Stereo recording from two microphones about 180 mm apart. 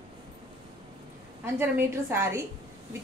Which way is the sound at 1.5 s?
10° right (ahead or behind).